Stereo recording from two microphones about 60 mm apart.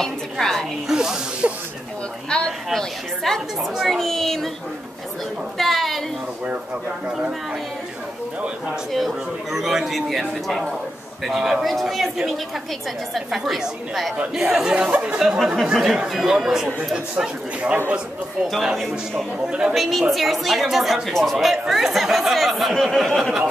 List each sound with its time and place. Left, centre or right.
0.0 s a sound: centre
0.8 s snake: centre
2.2 s chatter: centre
3.7 s a woman's voice: centre
5.6 s a woman's voice: centre
8.9 s a woman's voice: centre; by 15.1 s right
15.1 s a woman's voice: centre
18.5 s a woman's voice: centre